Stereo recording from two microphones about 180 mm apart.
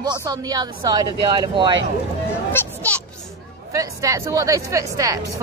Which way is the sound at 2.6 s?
10° left (ahead or behind).